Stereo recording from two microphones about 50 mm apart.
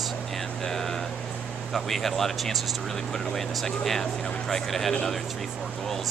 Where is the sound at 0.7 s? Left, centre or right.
Centre.